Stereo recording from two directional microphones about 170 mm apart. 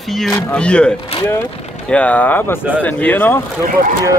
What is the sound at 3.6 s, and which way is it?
Speech, 55° right (ahead or behind).